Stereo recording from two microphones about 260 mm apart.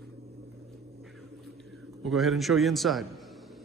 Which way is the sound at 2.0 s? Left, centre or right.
Centre.